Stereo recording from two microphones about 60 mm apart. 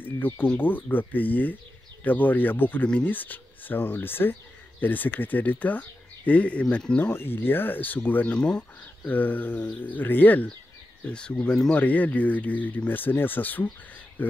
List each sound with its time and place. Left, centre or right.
0.0 s a sound: left
0.6 s speech: left
7.1 s speech: left
8.4 s speech: centre
9.1 s speech: left
11.1 s speech: centre